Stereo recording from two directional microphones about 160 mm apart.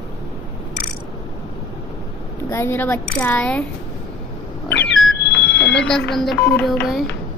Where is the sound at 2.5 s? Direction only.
15° left (ahead or behind).